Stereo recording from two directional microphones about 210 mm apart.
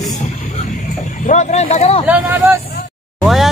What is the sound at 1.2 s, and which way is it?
Speech, 35° left (ahead or behind).